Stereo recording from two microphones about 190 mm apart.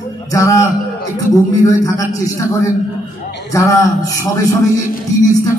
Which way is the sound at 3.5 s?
15° left (ahead or behind).